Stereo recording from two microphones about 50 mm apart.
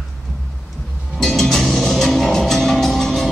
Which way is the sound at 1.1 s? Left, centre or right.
Centre.